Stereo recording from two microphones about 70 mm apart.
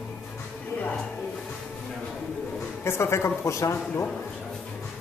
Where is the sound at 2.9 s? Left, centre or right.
Left.